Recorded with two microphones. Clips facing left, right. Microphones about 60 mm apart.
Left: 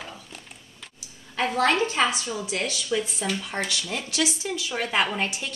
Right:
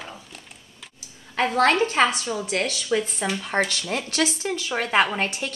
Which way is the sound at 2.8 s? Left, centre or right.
Right.